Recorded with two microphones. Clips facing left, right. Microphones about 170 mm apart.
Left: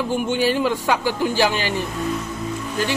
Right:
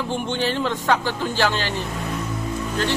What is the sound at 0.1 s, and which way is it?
A man's voice, 10° left (ahead or behind).